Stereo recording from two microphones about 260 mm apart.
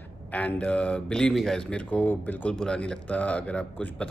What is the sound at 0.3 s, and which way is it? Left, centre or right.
A man's voice, centre.